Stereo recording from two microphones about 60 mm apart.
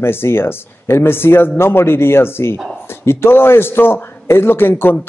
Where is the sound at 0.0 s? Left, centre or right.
Left.